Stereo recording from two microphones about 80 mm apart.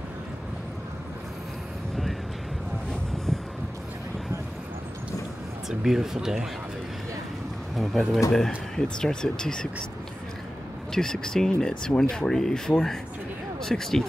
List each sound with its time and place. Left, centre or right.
5.7 s speech: centre
7.7 s speech: centre
10.9 s speech: centre